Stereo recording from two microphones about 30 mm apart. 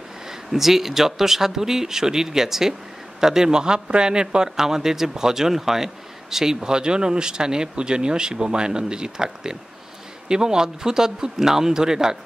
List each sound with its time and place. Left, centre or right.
0.5 s speech: centre